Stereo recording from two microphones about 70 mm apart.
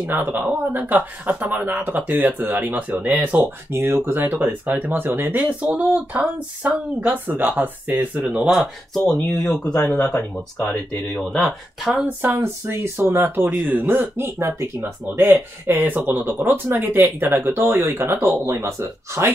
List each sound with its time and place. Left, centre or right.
0.0 s speech: right
3.3 s speech: right; by 8.5 s centre
8.5 s speech: centre
11.2 s speech: centre
12.1 s speech: right